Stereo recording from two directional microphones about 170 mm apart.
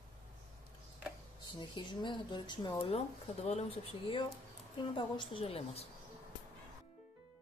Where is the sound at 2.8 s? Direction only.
35° left (ahead or behind).